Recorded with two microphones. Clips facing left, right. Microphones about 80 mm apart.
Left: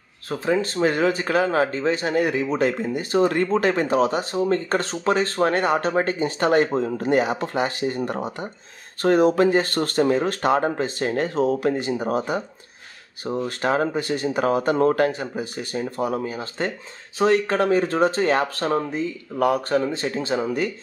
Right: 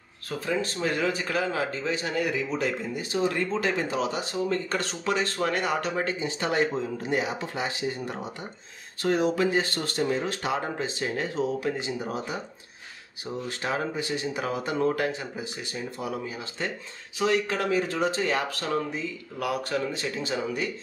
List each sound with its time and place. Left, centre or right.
0.3 s speech: left